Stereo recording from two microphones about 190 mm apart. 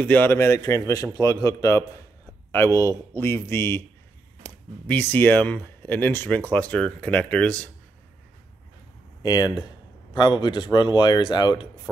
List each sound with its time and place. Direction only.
0.0 s speech: 10° left (ahead or behind)
4.8 s speech: 10° left (ahead or behind)
9.2 s speech: 20° left (ahead or behind)